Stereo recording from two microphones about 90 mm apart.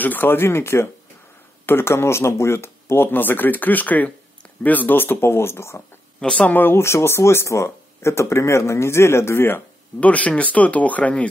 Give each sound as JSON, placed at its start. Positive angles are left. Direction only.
{"t": 0.0, "sound": "speech", "side_deg": 20}
{"t": 6.2, "sound": "speech", "side_deg": 15}